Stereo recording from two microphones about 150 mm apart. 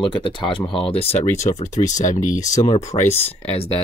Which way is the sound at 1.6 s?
55° left (ahead or behind).